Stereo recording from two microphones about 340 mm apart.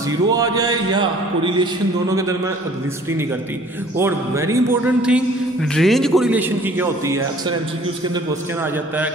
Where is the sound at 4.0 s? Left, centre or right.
Centre.